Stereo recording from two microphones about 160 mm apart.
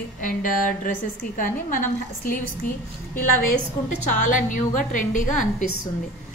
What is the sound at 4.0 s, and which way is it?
A woman's voice, 50° left (ahead or behind).